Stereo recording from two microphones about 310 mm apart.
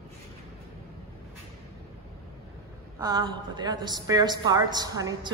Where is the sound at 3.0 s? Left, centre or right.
Centre.